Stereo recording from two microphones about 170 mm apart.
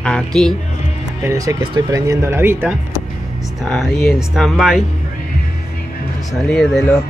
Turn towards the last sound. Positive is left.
turn(degrees=0)  # may be behind; listen again after turning